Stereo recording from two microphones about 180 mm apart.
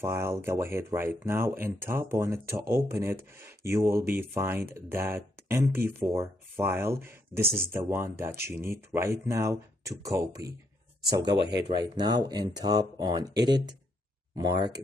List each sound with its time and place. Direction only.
0.0 s speech: 15° right (ahead or behind)
11.3 s speech: 75° right (ahead or behind)
11.6 s speech: 25° right (ahead or behind)